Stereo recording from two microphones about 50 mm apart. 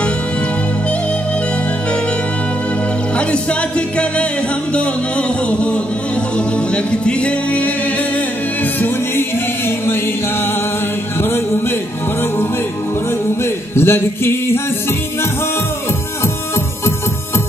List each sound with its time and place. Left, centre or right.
3.2 s music: left
5.5 s music: left
11.1 s music: left
13.7 s a sound: left